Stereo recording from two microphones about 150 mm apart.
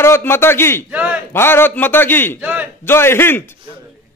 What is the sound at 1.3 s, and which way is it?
Speech, 15° left (ahead or behind).